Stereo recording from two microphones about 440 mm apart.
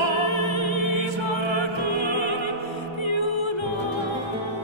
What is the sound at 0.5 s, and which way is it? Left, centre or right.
Music, left.